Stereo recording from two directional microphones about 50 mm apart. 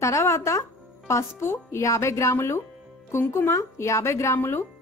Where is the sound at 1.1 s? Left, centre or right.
Left.